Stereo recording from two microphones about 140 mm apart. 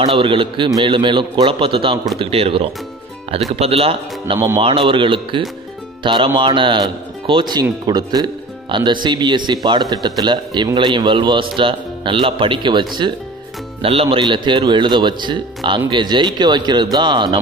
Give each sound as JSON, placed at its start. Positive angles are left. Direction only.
{"t": 0.0, "sound": "speech", "side_deg": -40}